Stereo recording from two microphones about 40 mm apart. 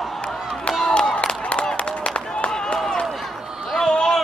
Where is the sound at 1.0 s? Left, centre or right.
Centre.